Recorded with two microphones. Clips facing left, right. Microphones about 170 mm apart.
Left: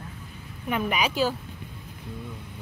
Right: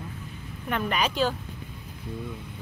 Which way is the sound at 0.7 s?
5° left (ahead or behind).